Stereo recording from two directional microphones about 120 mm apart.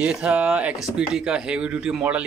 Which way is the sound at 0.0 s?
10° right (ahead or behind).